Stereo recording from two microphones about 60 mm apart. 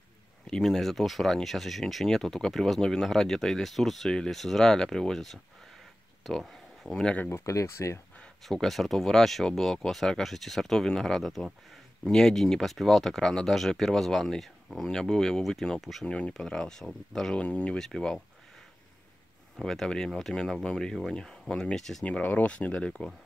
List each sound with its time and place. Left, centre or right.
0.5 s speech: centre
7.2 s speech: left
8.5 s speech: centre
16.1 s speech: centre
17.4 s speech: left
17.7 s speech: centre
19.6 s speech: centre
22.0 s speech: left